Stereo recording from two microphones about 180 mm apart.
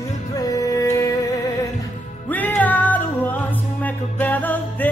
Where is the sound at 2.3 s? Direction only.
10° left (ahead or behind).